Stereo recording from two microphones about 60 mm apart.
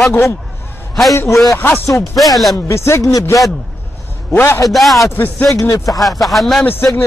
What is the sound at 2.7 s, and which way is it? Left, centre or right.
Speech, left.